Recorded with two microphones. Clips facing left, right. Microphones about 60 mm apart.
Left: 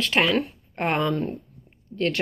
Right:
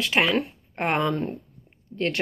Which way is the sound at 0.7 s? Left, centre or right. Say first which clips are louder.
Even; right.